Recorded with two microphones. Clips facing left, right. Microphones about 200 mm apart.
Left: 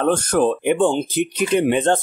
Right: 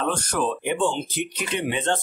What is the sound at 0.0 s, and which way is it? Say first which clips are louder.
Speech: left 8 dB; 50° left (ahead or behind).